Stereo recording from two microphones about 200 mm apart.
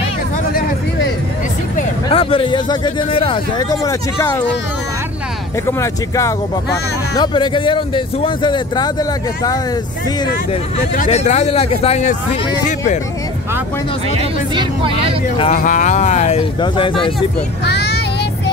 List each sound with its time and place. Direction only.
2.0 s speech: 25° left (ahead or behind)
3.8 s speech: 15° left (ahead or behind)
5.7 s speech: 15° left (ahead or behind)
11.0 s speech: 35° left (ahead or behind)
14.5 s speech: 25° right (ahead or behind)
15.5 s speech: 40° left (ahead or behind); by 17.1 s 25° left (ahead or behind)
17.6 s vehicle: 55° left (ahead or behind)